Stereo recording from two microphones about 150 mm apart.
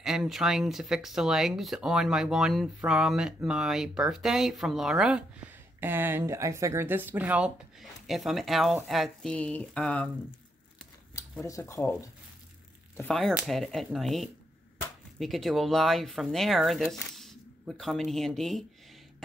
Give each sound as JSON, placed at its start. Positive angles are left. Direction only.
{"t": 0.0, "sound": "speech", "side_deg": -5}
{"t": 11.4, "sound": "speech", "side_deg": 20}
{"t": 13.5, "sound": "speech", "side_deg": 0}